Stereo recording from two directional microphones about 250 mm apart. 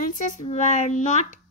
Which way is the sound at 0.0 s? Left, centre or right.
Left.